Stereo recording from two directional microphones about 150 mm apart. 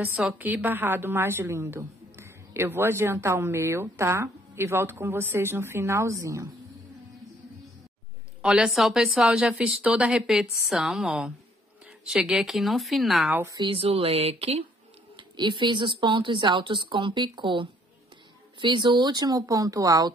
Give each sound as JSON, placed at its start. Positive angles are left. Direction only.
{"t": 0.3, "sound": "a woman's voice", "side_deg": -10}
{"t": 8.4, "sound": "a woman's voice", "side_deg": -5}
{"t": 13.3, "sound": "a woman's voice", "side_deg": -20}
{"t": 13.6, "sound": "a woman's voice", "side_deg": -35}